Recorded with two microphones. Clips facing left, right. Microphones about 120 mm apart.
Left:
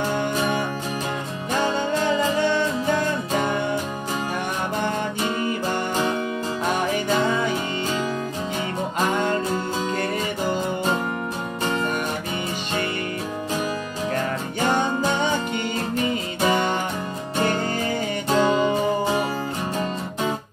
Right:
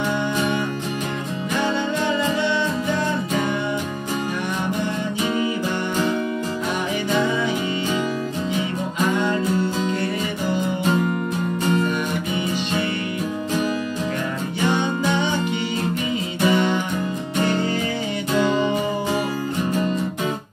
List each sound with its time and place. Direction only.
2.1 s music: 45° left (ahead or behind)
9.1 s music: 45° left (ahead or behind)
14.7 s music: 45° left (ahead or behind)
16.4 s music: 45° left (ahead or behind)